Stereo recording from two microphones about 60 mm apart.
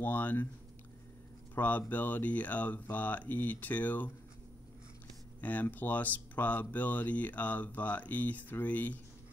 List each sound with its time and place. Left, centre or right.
0.0 s speech: left
1.5 s speech: left
5.4 s speech: left